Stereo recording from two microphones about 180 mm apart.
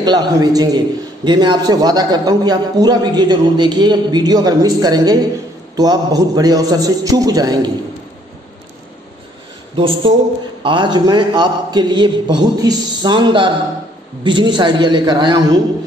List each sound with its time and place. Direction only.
0.0 s a man's voice: 25° right (ahead or behind)
9.8 s a man's voice: 30° right (ahead or behind)